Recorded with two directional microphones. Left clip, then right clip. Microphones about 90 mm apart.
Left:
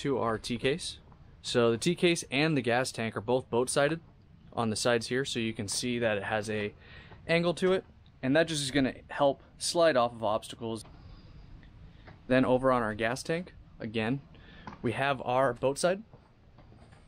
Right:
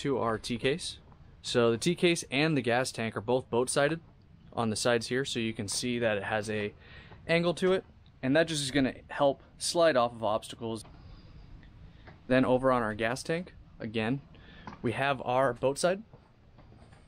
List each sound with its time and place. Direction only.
0.0 s speech: 5° right (ahead or behind)
12.3 s speech: 5° right (ahead or behind)